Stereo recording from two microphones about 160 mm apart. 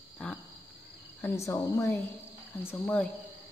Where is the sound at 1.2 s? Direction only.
20° left (ahead or behind).